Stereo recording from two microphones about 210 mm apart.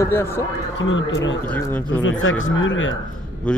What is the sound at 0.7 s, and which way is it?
Speech, 65° left (ahead or behind).